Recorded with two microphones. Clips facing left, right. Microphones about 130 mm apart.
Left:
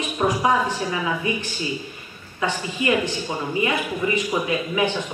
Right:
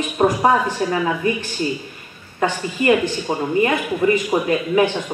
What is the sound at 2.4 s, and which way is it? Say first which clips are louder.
A woman's voice: right 4 dB; 50° right (ahead or behind).